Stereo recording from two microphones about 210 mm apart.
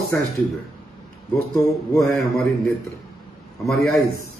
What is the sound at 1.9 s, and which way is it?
Speech, centre (ahead or behind).